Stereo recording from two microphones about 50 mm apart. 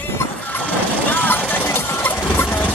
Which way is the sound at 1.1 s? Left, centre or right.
Left.